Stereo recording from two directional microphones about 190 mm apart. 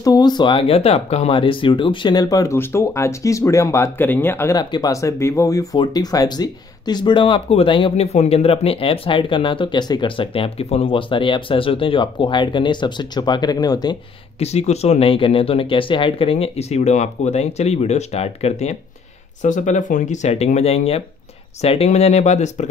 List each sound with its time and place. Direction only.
0.0 s speech: 20° left (ahead or behind)
14.4 s speech: 35° left (ahead or behind)